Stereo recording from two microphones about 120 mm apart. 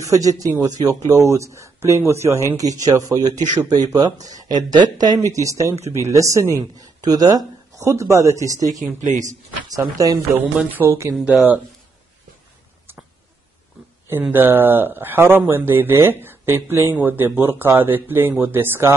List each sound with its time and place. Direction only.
0.0 s speech: 30° right (ahead or behind)
8.6 s speech: centre (ahead or behind)
9.1 s speech: 90° right
9.7 s speech: 30° right (ahead or behind)
10.3 s speech: 15° right (ahead or behind)
11.1 s speech: centre (ahead or behind)
14.3 s speech: 15° right (ahead or behind)